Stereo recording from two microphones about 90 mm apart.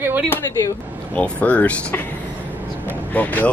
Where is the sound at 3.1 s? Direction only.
15° left (ahead or behind).